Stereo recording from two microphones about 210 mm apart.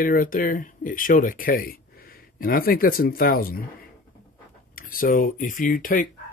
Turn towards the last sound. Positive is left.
turn(degrees=40)  # may be behind; listen again after turning